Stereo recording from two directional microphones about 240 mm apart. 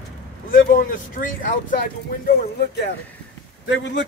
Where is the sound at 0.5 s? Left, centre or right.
Left.